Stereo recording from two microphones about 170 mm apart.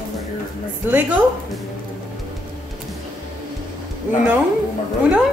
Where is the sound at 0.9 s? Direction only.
10° right (ahead or behind).